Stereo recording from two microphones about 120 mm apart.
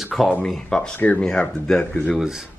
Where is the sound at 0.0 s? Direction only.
Centre (ahead or behind).